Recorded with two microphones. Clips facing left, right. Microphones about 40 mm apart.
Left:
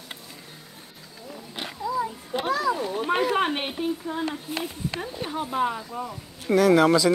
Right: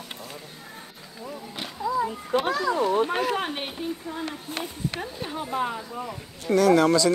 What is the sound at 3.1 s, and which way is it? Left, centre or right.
Speech, centre.